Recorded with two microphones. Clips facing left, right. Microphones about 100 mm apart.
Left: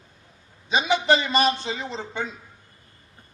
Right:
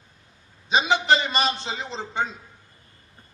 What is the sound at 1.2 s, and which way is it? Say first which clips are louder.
A man's voice: left 3 dB; 30° right (ahead or behind).